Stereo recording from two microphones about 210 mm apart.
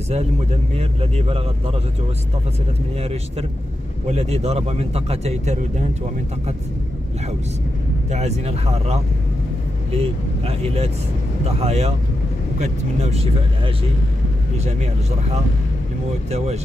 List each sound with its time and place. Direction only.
0.1 s a man's voice: 30° right (ahead or behind)
3.0 s a man's voice: 30° right (ahead or behind)
8.1 s a man's voice: 30° right (ahead or behind)
9.9 s a man's voice: 30° right (ahead or behind)
16.3 s a man's voice: 30° right (ahead or behind)